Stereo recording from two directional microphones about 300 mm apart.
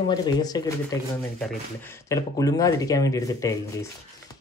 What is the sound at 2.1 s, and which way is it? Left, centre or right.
Speech, centre.